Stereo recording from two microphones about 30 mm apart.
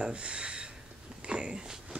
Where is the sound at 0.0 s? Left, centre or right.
Right.